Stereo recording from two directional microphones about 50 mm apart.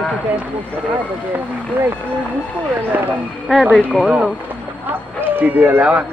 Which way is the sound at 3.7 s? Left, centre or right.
Centre.